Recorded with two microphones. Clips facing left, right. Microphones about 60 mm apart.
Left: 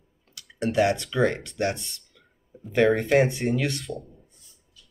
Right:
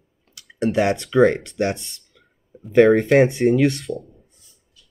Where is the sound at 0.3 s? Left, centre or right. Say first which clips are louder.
Right 6 dB; right.